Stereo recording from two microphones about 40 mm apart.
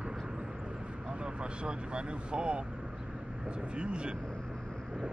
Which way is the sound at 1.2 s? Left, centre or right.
Right.